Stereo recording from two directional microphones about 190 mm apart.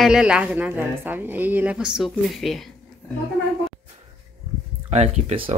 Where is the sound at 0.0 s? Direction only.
5° right (ahead or behind).